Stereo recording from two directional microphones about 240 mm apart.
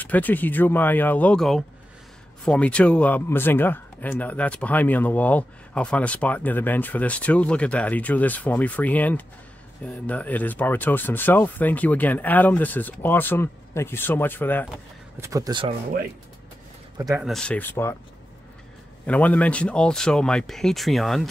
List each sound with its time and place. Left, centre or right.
0.0 s speech: centre
15.1 s speech: centre
16.9 s speech: centre
17.2 s speech: centre
19.0 s speech: centre